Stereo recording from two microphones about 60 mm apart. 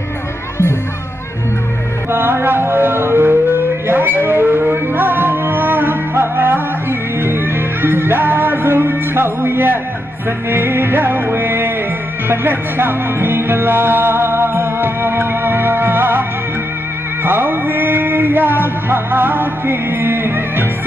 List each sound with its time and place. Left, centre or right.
2.1 s music: right